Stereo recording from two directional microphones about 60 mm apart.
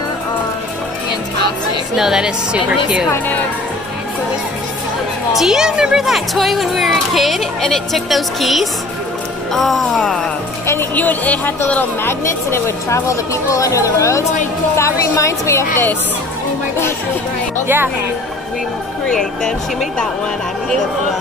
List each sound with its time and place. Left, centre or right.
2.0 s a woman's voice: centre
5.3 s a woman's voice: centre
11.0 s speech: left
12.0 s speech: left
19.0 s speech: centre